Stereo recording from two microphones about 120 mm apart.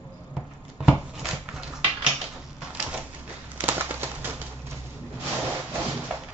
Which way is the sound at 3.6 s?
15° right (ahead or behind).